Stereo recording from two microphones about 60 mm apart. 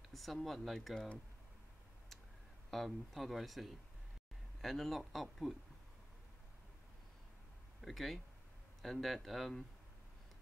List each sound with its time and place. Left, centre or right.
0.1 s speech: centre
0.9 s speech: centre
2.7 s speech: centre
7.8 s speech: centre